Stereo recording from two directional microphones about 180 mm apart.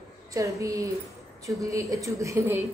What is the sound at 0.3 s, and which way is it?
A woman's voice, 20° right (ahead or behind).